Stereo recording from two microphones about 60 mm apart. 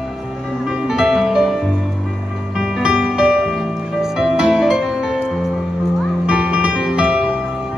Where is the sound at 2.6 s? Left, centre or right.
Centre.